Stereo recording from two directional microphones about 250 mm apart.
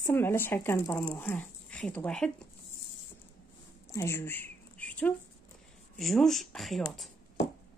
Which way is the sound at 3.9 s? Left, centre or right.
Centre.